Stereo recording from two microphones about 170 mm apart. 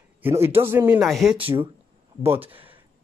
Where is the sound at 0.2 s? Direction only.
15° right (ahead or behind).